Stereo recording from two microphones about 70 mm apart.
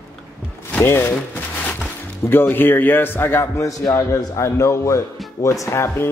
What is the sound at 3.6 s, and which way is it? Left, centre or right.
A man's voice, left.